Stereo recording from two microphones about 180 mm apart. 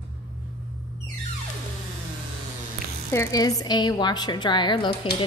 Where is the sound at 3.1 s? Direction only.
15° left (ahead or behind).